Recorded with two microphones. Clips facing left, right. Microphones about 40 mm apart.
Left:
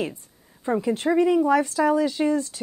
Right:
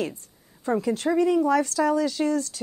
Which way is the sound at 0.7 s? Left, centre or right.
Centre.